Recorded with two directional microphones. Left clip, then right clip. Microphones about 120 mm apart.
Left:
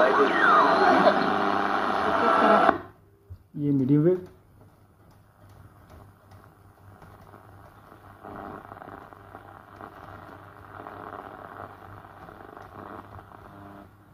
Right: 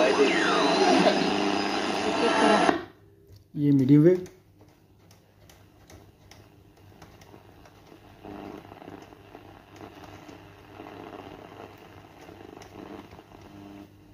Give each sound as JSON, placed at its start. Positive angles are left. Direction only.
{"t": 0.0, "sound": "vehicle", "side_deg": 40}
{"t": 3.5, "sound": "speech", "side_deg": -10}
{"t": 8.2, "sound": "purr", "side_deg": 40}